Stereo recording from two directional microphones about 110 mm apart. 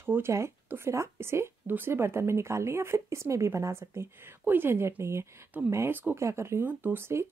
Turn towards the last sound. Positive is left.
turn(degrees=-20)  # may be behind; listen again after turning